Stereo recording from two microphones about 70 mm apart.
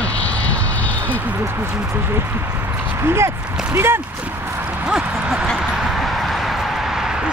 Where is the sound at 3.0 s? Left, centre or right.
Right.